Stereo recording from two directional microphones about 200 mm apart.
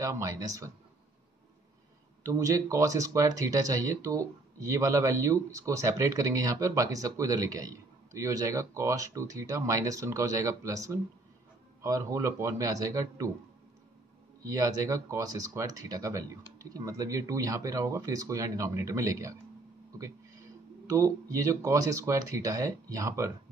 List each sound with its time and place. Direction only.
0.0 s speech: 15° right (ahead or behind)
2.2 s speech: 15° right (ahead or behind)
14.4 s speech: 15° right (ahead or behind)